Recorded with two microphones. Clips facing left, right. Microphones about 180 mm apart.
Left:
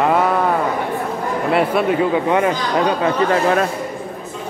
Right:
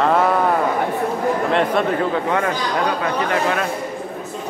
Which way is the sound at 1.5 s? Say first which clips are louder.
Left 6 dB; 5° left (ahead or behind).